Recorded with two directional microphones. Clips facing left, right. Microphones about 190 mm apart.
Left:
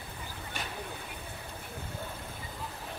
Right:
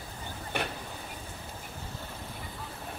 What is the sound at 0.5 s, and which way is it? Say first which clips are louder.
Vehicle: right 8 dB; 60° right (ahead or behind).